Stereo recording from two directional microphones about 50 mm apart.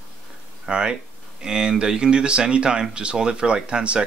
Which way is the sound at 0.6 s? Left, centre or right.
Centre.